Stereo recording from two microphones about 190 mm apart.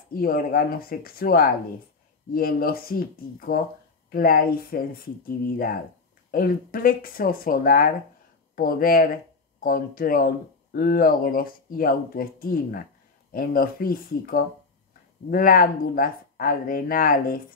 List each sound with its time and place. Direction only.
0.1 s speech: 50° left (ahead or behind)